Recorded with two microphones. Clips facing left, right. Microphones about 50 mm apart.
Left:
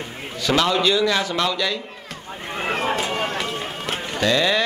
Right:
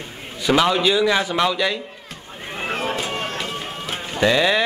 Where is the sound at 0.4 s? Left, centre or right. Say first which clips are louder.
Right 2 dB; centre.